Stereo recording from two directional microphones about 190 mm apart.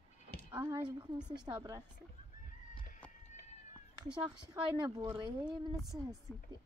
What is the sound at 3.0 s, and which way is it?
Run, 5° left (ahead or behind).